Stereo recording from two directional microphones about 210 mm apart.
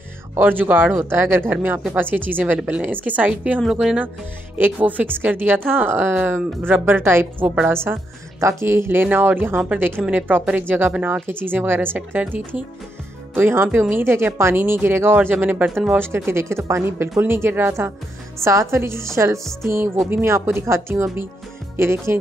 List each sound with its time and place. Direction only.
0.3 s speech: 10° right (ahead or behind)